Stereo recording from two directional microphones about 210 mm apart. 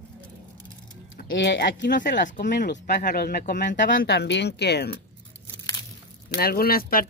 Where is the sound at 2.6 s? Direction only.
55° left (ahead or behind).